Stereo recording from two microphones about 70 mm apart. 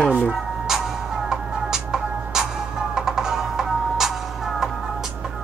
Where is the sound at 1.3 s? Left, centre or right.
Centre.